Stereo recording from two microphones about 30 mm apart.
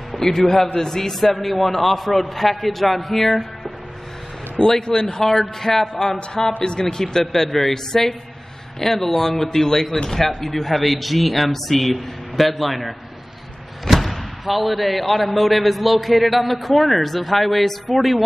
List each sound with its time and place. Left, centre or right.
0.1 s a sound: centre
0.7 s a man's voice: centre
4.6 s speech: left
5.2 s a man's voice: centre
6.0 s speech: left
7.3 s a man's voice: centre
13.9 s a man's voice: centre